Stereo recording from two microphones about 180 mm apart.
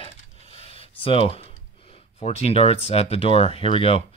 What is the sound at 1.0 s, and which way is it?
Speech, 30° left (ahead or behind).